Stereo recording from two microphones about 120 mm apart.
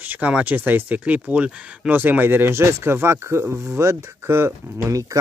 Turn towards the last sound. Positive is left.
turn(degrees=-25)  # may be behind; listen again after turning